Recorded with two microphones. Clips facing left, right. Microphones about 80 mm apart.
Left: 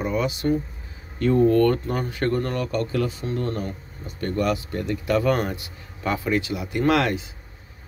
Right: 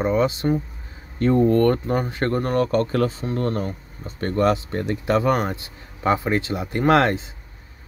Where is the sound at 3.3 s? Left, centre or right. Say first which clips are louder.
Right 3 dB; right.